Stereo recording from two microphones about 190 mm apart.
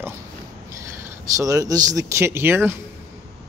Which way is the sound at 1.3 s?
15° right (ahead or behind).